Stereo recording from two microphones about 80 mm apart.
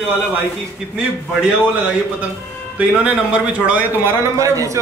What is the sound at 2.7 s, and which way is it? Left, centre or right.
Speech, centre.